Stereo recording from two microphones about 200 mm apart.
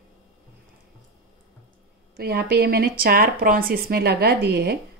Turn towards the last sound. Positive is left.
turn(degrees=-50)  # may be behind; listen again after turning